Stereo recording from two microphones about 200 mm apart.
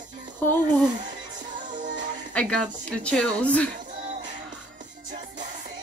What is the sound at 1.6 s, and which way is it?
Music, 40° right (ahead or behind).